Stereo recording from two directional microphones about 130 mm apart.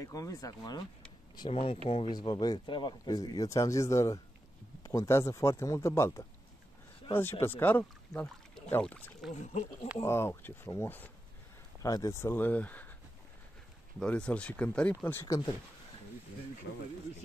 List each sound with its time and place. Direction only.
0.0 s speech: 25° left (ahead or behind)
1.5 s speech: 50° left (ahead or behind)
2.0 s speech: 35° left (ahead or behind); by 9.3 s 10° left (ahead or behind)
9.3 s speech: 65° left (ahead or behind)
10.0 s speech: 20° left (ahead or behind)
13.9 s speech: 5° left (ahead or behind)